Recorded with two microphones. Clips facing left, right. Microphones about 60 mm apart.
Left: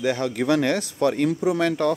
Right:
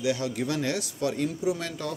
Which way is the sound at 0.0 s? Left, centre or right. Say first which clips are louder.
Left 4 dB; left.